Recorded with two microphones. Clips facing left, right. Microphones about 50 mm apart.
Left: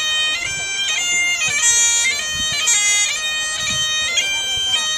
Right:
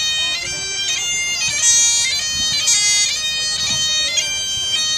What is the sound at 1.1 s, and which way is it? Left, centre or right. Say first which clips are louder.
Bagpipes: left 6 dB; centre.